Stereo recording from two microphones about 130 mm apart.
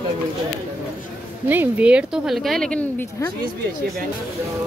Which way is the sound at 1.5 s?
10° right (ahead or behind).